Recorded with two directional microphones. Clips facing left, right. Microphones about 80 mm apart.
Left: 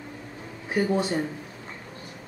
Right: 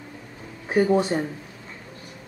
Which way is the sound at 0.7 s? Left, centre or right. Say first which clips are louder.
Right 5 dB; right.